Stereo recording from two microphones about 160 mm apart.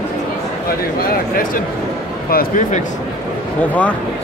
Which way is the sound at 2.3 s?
70° left (ahead or behind).